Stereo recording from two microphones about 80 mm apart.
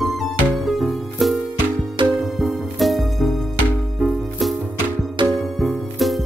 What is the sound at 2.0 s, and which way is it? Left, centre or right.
Music, right.